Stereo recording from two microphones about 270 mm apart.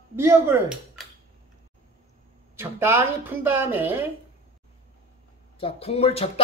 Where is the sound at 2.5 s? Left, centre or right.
Centre.